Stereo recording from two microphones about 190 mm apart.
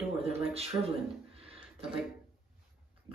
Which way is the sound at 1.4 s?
30° right (ahead or behind).